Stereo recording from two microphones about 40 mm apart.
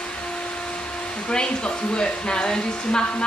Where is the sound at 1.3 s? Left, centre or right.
Left.